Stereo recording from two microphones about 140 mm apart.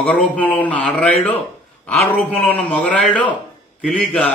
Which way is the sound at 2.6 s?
10° left (ahead or behind).